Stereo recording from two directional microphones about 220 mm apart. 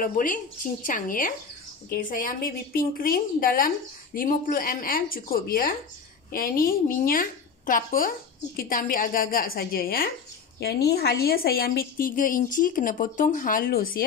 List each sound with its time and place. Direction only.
0.0 s a woman's voice: 40° left (ahead or behind)